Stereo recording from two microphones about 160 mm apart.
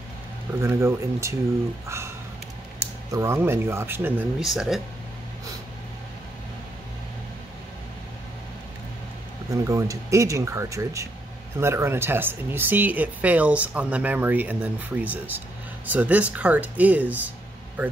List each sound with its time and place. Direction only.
0.6 s speech: 15° right (ahead or behind)
4.4 s speech: centre (ahead or behind)
9.7 s speech: 20° right (ahead or behind)